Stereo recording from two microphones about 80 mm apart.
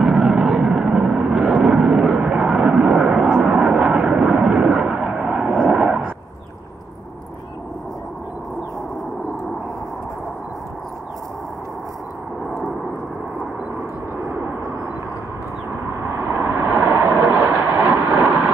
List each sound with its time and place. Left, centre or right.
0.0 s vehicle: centre
16.3 s vehicle: right